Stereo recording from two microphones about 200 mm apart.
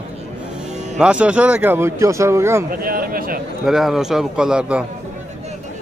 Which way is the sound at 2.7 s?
45° right (ahead or behind).